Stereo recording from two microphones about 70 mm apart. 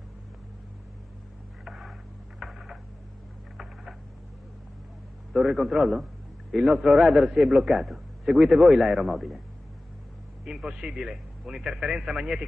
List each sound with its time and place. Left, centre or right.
1.6 s a sound: centre
5.3 s a man's voice: centre
10.4 s speech: centre